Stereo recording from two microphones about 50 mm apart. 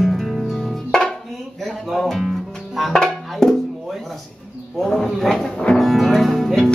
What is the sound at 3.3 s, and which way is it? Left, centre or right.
Music, centre.